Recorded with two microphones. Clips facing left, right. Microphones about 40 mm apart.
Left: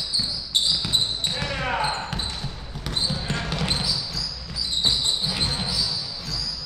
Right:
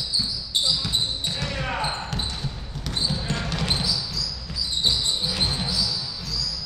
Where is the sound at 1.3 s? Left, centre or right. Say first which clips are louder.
Left 2 dB; centre.